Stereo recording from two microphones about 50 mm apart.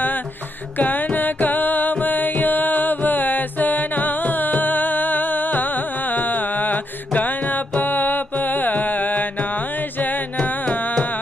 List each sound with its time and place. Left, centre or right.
0.7 s music: left